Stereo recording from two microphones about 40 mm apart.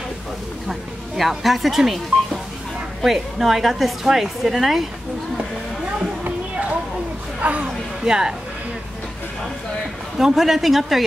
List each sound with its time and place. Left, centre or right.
0.7 s speech: centre
3.0 s a woman's voice: centre
6.2 s music: right
7.3 s a sound: right
8.0 s a woman's voice: centre
10.1 s speech: centre